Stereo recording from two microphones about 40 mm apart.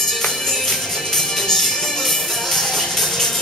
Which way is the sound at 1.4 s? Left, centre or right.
Centre.